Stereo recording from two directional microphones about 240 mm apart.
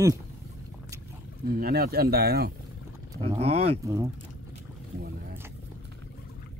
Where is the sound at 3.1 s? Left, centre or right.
Centre.